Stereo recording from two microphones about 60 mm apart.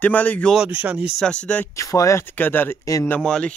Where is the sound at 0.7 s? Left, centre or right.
Right.